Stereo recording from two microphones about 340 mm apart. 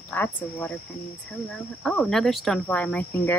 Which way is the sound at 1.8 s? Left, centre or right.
Centre.